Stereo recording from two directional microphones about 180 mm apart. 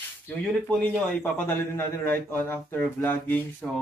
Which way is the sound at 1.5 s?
10° left (ahead or behind).